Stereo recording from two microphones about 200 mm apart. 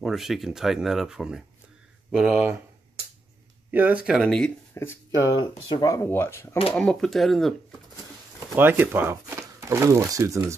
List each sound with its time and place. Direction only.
0.0 s speech: centre (ahead or behind)
3.7 s speech: 5° right (ahead or behind)
4.7 s speech: 15° left (ahead or behind)
8.5 s speech: 10° right (ahead or behind)